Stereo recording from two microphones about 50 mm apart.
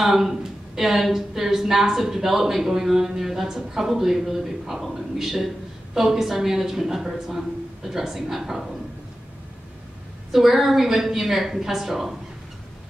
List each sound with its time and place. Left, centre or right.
0.0 s a woman's voice: centre
10.3 s a woman's voice: centre